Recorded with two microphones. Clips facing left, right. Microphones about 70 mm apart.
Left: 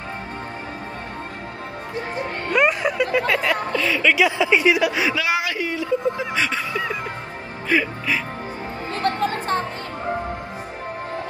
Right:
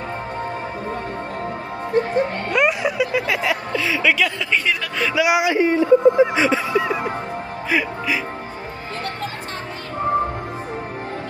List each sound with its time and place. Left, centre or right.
2.5 s speech: centre
3.7 s speech: centre
4.1 s speech: centre
5.1 s speech: centre
5.6 s speech: right
6.3 s a sound: centre
7.7 s speech: centre